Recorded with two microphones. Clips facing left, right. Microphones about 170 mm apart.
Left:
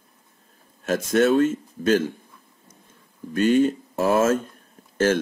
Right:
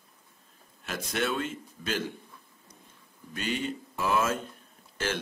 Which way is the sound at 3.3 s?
50° left (ahead or behind).